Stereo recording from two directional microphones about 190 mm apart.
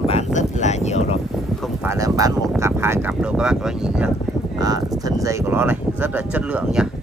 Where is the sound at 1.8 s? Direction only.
20° right (ahead or behind).